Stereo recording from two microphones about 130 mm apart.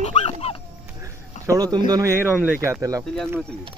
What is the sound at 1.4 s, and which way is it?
Speech, 30° right (ahead or behind).